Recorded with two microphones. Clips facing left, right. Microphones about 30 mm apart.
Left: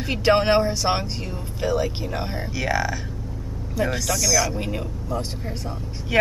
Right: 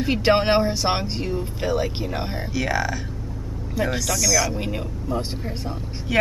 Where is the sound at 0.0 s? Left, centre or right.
Centre.